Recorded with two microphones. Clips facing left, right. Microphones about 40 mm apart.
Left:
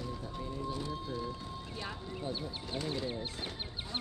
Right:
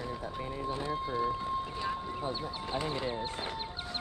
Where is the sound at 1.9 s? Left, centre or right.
Centre.